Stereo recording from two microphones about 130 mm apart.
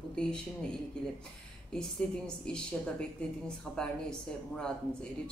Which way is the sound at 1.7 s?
5° left (ahead or behind).